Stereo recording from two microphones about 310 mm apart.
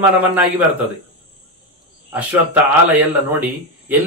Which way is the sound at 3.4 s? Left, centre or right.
Centre.